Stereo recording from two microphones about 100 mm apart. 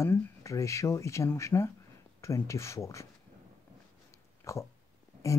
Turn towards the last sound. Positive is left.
turn(degrees=30)  # may be behind; listen again after turning